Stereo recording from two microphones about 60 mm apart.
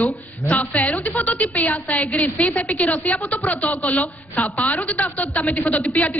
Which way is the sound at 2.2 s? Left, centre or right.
Left.